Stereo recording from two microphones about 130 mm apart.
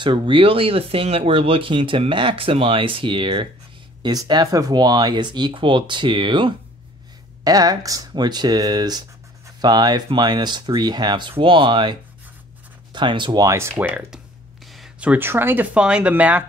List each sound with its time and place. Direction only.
0.0 s speech: 40° right (ahead or behind)
7.4 s speech: 30° right (ahead or behind)
13.5 s speech: 20° right (ahead or behind)